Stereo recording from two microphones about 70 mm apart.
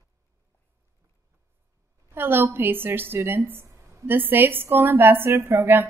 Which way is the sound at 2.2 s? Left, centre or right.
Right.